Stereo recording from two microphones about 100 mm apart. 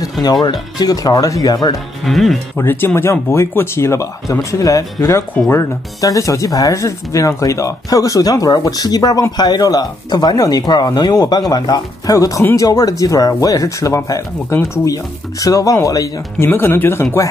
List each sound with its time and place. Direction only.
0.2 s speech: 45° left (ahead or behind)
2.0 s speech: centre (ahead or behind)
2.5 s speech: 20° left (ahead or behind)
16.3 s speech: 20° left (ahead or behind)